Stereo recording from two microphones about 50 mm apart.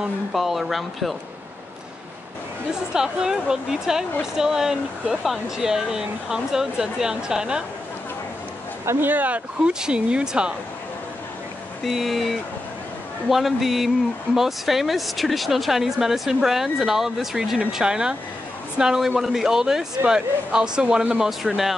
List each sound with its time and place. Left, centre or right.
0.3 s speech: centre
2.9 s speech: centre
9.0 s speech: right
9.7 s speech: centre
11.8 s speech: centre